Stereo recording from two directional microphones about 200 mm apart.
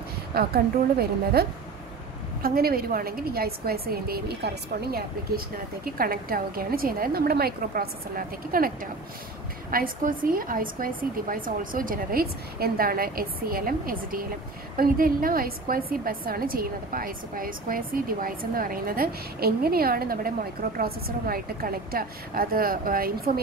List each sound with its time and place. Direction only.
0.3 s a woman's voice: 50° right (ahead or behind)